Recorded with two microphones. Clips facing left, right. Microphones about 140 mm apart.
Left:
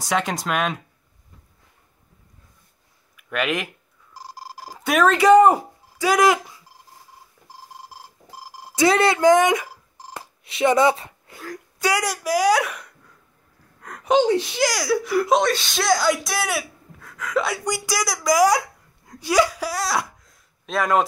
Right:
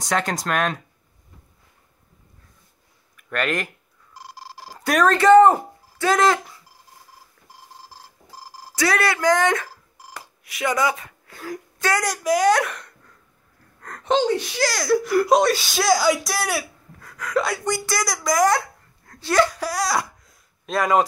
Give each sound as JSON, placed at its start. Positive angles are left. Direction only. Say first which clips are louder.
{"t": 0.0, "sound": "speech", "louder": "even", "side_deg": 5}
{"t": 3.2, "sound": "speech", "louder": "even", "side_deg": 5}
{"t": 4.1, "sound": "a sound", "louder": "left 2 dB", "side_deg": 40}
{"t": 4.7, "sound": "speech", "louder": "even", "side_deg": 0}
{"t": 8.7, "sound": "speech", "louder": "left 4 dB", "side_deg": 20}
{"t": 10.1, "sound": "a sound", "louder": "left 4 dB", "side_deg": 25}
{"t": 11.8, "sound": "speech", "louder": "even", "side_deg": 5}